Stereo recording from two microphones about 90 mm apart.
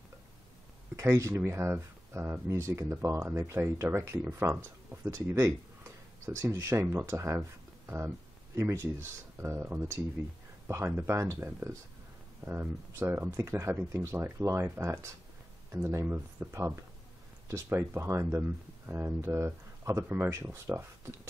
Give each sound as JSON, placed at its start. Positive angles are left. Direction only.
{"t": 0.9, "sound": "speech", "side_deg": -35}
{"t": 17.6, "sound": "speech", "side_deg": -30}